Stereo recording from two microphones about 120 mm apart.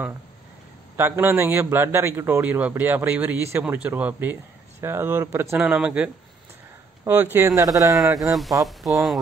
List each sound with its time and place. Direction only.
0.9 s a man's voice: 20° right (ahead or behind)
7.3 s speech: 25° right (ahead or behind)
8.6 s speech: centre (ahead or behind)